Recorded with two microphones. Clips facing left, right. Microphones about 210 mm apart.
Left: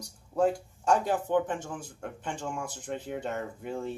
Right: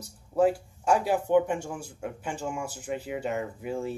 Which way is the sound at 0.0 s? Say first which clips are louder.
Right 3 dB; 5° right (ahead or behind).